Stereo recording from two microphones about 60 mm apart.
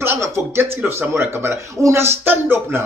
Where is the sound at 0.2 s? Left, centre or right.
Right.